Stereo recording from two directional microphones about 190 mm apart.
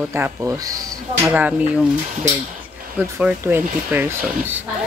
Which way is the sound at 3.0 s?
5° right (ahead or behind).